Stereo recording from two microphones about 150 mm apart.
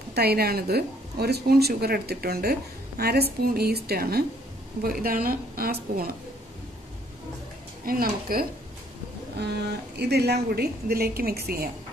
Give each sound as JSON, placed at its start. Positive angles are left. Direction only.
{"t": 0.1, "sound": "a woman's voice", "side_deg": -90}
{"t": 4.8, "sound": "a woman's voice", "side_deg": -75}
{"t": 7.8, "sound": "a woman's voice", "side_deg": -80}